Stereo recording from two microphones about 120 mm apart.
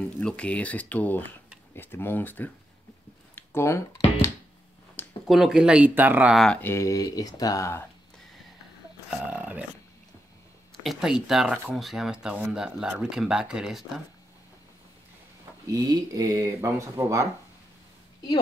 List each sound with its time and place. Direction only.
0.2 s speech: 10° left (ahead or behind)
3.3 s a sound: 20° left (ahead or behind)
5.3 s speech: 5° right (ahead or behind)
6.3 s speech: 5° left (ahead or behind)
6.6 s speech: 25° left (ahead or behind)
9.3 s speech: 15° right (ahead or behind)
10.8 s speech: centre (ahead or behind)
15.6 s speech: 30° right (ahead or behind)